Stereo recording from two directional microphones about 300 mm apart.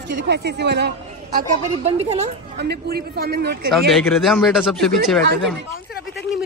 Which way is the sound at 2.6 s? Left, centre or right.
Right.